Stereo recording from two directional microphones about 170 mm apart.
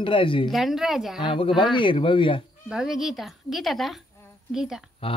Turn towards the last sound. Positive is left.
turn(degrees=35)  # may be behind; listen again after turning